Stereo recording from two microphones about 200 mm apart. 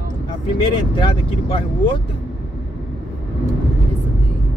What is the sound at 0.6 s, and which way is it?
Speech, 25° left (ahead or behind).